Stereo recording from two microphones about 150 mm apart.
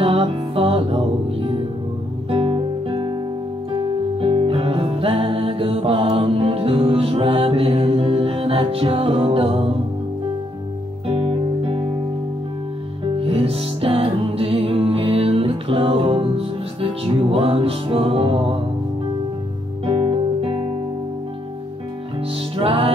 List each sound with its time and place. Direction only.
0.0 s music: 35° right (ahead or behind)
2.2 s guitar: 40° right (ahead or behind)
3.7 s music: 40° right (ahead or behind)
11.1 s music: 40° right (ahead or behind)
13.0 s music: 40° right (ahead or behind)
19.9 s music: 40° right (ahead or behind)
22.6 s music: 35° right (ahead or behind)